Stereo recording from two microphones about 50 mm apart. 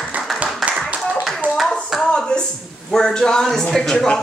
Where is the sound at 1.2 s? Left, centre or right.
Centre.